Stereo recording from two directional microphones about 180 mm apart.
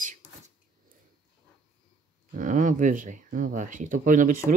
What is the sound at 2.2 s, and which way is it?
Speech, 45° right (ahead or behind).